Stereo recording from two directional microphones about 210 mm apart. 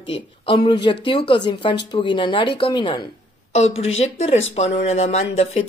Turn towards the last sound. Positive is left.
turn(degrees=30)  # may be behind; listen again after turning